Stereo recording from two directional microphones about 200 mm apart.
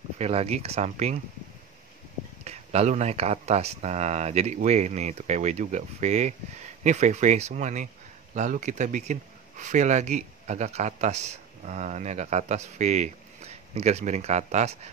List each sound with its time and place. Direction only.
0.2 s speech: 30° right (ahead or behind)
2.4 s speech: 30° right (ahead or behind)